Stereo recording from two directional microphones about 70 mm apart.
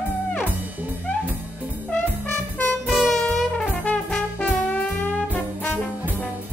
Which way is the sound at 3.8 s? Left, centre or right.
Centre.